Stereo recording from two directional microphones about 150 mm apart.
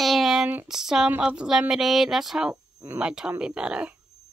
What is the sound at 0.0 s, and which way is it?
Speech, centre (ahead or behind).